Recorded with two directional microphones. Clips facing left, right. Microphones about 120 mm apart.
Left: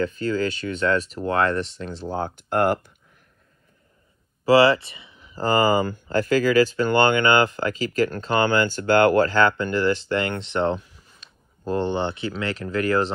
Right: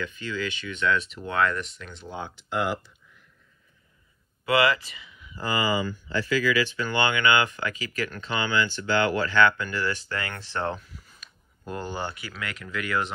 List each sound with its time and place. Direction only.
0.0 s speech: 40° left (ahead or behind)
4.5 s speech: 30° left (ahead or behind)